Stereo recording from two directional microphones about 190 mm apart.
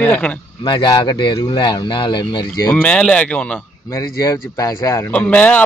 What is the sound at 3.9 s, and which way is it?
Speech, 15° left (ahead or behind).